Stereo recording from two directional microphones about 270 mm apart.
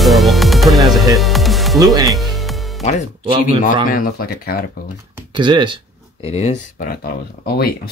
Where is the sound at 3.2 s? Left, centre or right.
Centre.